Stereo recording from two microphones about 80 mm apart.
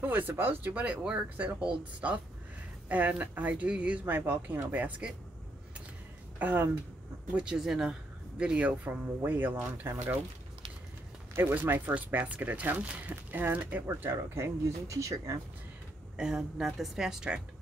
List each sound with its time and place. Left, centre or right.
0.0 s speech: right
0.8 s speech: centre
4.0 s speech: right
6.3 s a woman's voice: right
7.3 s a woman's voice: centre; by 10.1 s right
11.3 s speech: right
14.1 s speech: right
16.2 s a woman's voice: centre